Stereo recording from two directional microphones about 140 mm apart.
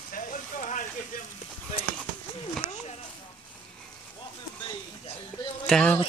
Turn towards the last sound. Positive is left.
turn(degrees=5)  # may be behind; listen again after turning